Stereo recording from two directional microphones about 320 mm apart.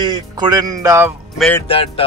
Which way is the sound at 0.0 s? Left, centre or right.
Centre.